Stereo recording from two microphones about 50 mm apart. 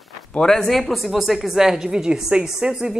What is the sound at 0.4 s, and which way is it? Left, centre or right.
A woman's voice, centre.